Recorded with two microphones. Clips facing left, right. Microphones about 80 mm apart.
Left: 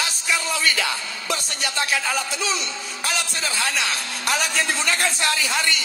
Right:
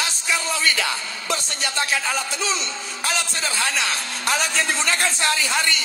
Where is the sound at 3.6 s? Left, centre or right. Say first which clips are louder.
Even; right.